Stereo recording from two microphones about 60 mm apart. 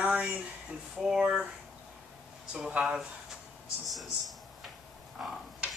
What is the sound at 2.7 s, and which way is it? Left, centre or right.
Speech, right.